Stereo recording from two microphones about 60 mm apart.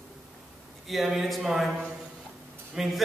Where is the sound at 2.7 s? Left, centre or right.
Centre.